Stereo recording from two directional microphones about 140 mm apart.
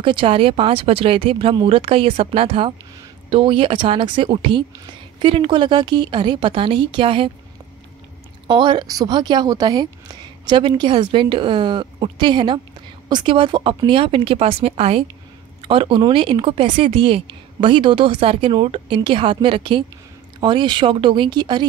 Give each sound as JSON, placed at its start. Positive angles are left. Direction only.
{"t": 0.0, "sound": "a woman's voice", "side_deg": -35}
{"t": 8.5, "sound": "a woman's voice", "side_deg": -35}